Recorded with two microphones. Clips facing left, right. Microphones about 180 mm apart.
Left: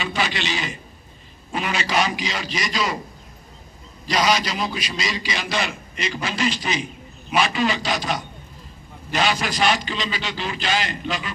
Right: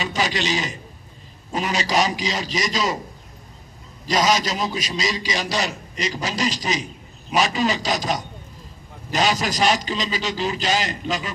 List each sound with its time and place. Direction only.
0.0 s a man's voice: 40° right (ahead or behind)
4.1 s a man's voice: 45° right (ahead or behind)